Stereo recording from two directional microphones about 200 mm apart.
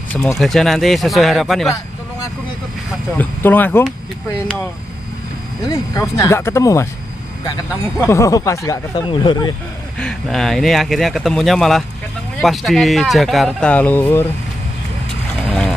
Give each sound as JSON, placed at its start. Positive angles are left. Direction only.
{"t": 0.1, "sound": "speech", "side_deg": 0}
{"t": 3.2, "sound": "speech", "side_deg": 10}
{"t": 5.7, "sound": "speech", "side_deg": 15}
{"t": 8.1, "sound": "speech", "side_deg": 15}
{"t": 9.9, "sound": "speech", "side_deg": 5}